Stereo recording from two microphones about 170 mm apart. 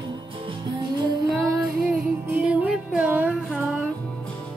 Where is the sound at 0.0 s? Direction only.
25° right (ahead or behind).